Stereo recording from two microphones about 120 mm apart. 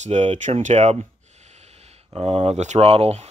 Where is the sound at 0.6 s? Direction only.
70° right (ahead or behind).